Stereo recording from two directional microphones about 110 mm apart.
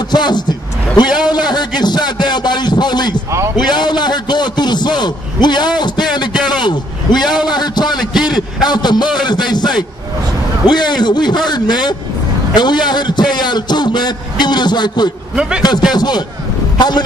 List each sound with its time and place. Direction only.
0.1 s a man's voice: 40° left (ahead or behind)
3.3 s speech: 25° right (ahead or behind)
3.5 s a man's voice: 40° left (ahead or behind)
8.0 s a sound: 5° right (ahead or behind)
8.6 s a man's voice: 40° left (ahead or behind)